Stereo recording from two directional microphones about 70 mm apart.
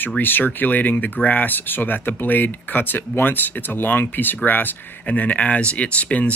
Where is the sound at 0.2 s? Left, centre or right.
Left.